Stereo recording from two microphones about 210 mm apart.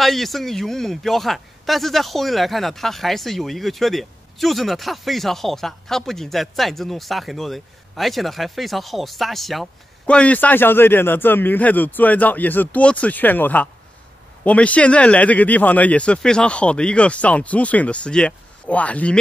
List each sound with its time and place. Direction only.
0.0 s speech: centre (ahead or behind)